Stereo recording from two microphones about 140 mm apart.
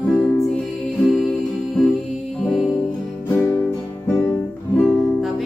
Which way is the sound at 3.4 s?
20° left (ahead or behind).